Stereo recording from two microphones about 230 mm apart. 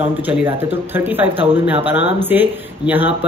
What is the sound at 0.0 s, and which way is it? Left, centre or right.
Speech, centre.